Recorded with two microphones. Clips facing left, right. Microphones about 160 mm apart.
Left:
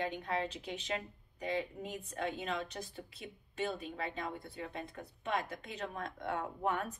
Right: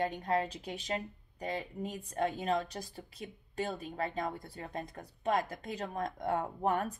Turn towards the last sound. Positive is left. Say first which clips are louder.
# right 4 dB
turn(degrees=-40)  # may be behind; listen again after turning